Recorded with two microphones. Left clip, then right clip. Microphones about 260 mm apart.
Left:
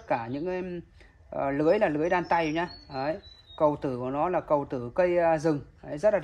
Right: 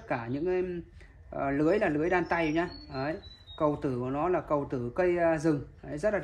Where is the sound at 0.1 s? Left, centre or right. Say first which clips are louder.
Left 1 dB; left.